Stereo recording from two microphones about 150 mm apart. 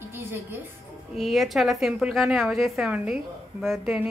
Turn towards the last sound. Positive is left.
turn(degrees=-5)  # may be behind; listen again after turning